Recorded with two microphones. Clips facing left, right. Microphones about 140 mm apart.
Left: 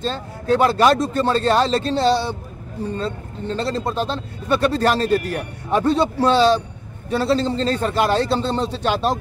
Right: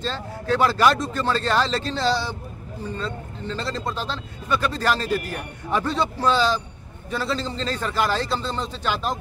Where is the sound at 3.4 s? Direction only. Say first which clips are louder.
Left 6 dB; 55° left (ahead or behind).